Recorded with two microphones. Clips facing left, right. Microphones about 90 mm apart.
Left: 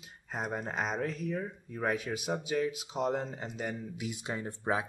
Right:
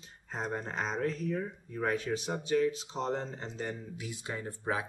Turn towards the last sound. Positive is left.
turn(degrees=20)  # may be behind; listen again after turning